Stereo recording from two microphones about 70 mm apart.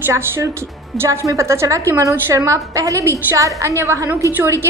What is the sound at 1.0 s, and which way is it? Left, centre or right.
A woman's voice, right.